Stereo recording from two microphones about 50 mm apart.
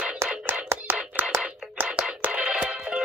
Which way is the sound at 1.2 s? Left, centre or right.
Right.